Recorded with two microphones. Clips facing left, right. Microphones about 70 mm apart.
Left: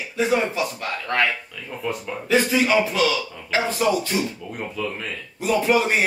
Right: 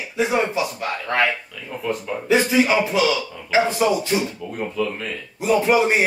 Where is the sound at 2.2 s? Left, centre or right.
Centre.